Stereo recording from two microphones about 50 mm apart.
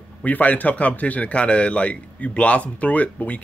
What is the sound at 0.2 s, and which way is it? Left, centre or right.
Speech, left.